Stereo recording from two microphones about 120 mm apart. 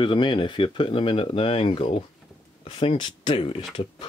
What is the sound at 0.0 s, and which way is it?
Speech, 40° left (ahead or behind).